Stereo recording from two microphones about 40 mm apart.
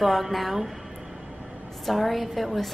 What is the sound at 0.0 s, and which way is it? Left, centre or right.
Speech, centre.